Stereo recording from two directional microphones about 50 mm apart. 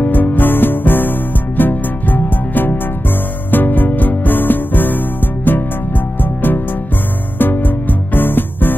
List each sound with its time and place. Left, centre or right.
0.0 s music: left